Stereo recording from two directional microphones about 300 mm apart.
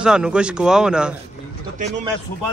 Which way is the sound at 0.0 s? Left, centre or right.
Centre.